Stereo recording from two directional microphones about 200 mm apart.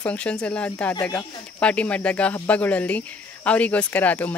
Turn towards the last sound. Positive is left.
turn(degrees=10)  # may be behind; listen again after turning